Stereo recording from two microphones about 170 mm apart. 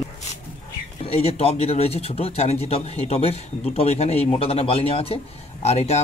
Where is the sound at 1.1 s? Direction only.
35° left (ahead or behind).